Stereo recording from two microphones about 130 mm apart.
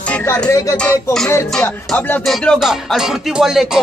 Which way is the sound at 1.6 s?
15° left (ahead or behind).